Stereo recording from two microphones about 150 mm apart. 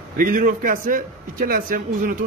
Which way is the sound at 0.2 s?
65° right (ahead or behind).